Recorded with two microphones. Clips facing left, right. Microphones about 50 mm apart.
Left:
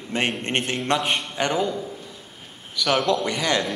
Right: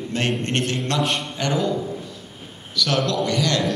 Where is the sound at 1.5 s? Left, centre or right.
Centre.